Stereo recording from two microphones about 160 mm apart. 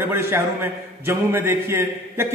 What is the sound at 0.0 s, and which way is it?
A man's voice, 15° right (ahead or behind).